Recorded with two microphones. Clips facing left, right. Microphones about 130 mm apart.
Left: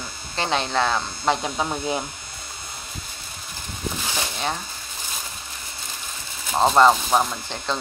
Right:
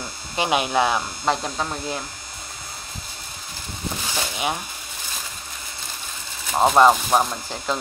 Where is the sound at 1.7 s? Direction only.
20° left (ahead or behind).